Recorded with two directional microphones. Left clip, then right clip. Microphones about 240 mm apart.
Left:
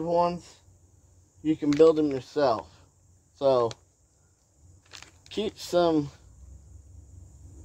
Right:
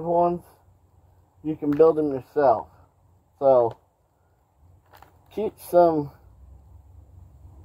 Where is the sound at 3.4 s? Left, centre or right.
Right.